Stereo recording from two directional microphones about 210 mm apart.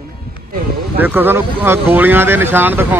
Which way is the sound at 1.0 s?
10° right (ahead or behind).